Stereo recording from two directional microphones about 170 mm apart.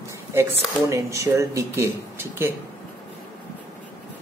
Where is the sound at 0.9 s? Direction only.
15° right (ahead or behind).